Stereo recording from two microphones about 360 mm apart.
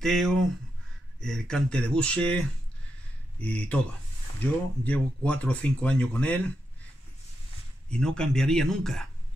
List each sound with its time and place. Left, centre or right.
0.0 s speech: centre
7.9 s speech: centre